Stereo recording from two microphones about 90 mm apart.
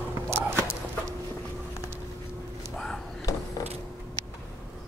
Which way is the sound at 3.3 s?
40° left (ahead or behind).